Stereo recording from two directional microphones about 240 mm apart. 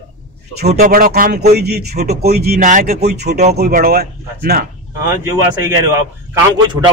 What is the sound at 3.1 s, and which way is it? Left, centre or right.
Speech, right.